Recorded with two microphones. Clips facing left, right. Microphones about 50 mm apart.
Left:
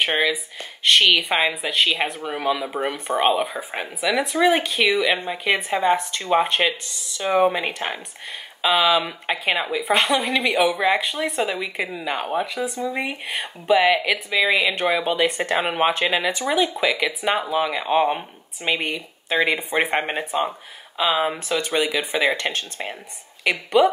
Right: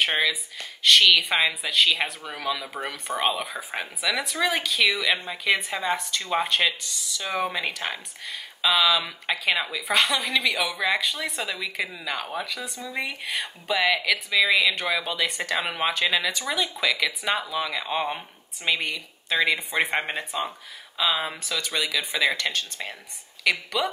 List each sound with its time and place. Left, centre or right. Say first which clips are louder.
0.2 s speech: left 3 dB; centre
0.8 s speech: left 1 dB; left; by 4.1 s centre
4.1 s speech: left 7 dB; left
4.9 s speech: left 5 dB; centre
9.9 s speech: left 2 dB; left